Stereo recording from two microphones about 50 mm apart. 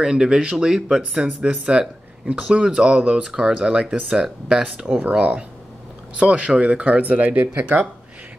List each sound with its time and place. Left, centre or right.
0.0 s speech: centre
1.2 s speech: centre
5.1 s speech: right